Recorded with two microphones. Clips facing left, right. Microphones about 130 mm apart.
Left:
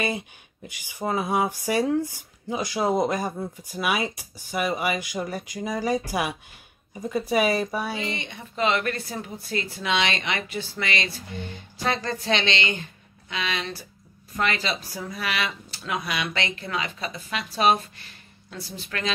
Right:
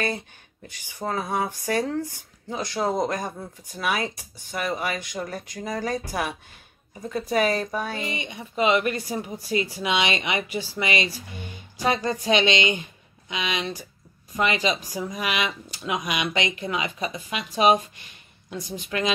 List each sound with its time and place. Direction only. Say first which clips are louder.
0.7 s speech: left 2 dB; 10° left (ahead or behind)
8.0 s speech: even; 15° right (ahead or behind)